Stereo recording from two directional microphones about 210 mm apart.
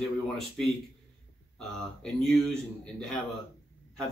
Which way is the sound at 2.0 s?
Centre (ahead or behind).